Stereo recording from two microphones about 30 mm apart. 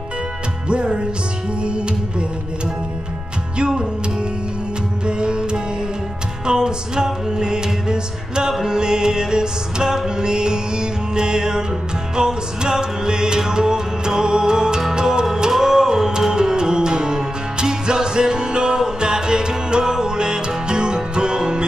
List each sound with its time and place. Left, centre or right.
0.7 s music: right
3.5 s music: right
5.0 s music: right
15.5 s music: centre; by 21.6 s right